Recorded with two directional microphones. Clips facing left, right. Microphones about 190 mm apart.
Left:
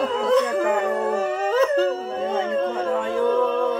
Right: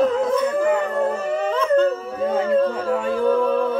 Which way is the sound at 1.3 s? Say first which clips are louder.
Right 3 dB; 40° left (ahead or behind).